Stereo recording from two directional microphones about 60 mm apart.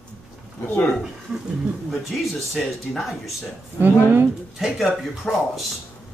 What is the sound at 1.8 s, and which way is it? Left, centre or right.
Speech, centre.